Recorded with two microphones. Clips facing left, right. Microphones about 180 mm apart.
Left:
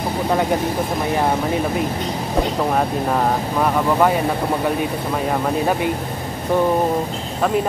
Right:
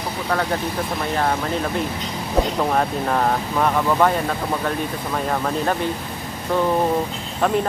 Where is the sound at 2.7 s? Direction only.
5° left (ahead or behind).